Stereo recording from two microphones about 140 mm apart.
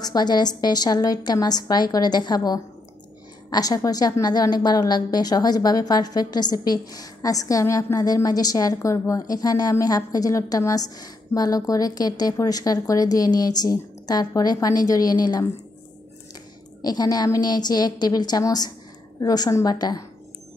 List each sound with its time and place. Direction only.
0.0 s a woman's voice: 30° left (ahead or behind)
16.8 s a woman's voice: 25° left (ahead or behind)